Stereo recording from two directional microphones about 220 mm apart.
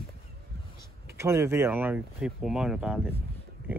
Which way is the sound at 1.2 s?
10° right (ahead or behind).